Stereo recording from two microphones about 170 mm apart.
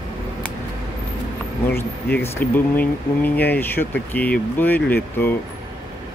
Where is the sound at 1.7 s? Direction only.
15° left (ahead or behind).